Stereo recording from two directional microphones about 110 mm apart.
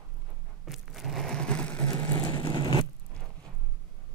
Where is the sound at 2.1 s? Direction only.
55° right (ahead or behind).